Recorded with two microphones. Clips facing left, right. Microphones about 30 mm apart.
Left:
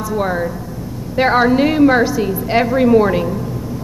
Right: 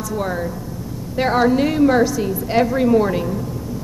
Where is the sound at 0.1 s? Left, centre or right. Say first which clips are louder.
Left 4 dB; left.